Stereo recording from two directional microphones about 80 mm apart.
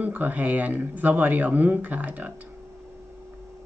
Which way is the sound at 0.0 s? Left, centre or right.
Right.